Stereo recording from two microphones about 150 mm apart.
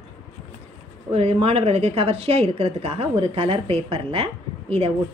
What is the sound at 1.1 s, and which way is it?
A woman's voice, 45° right (ahead or behind).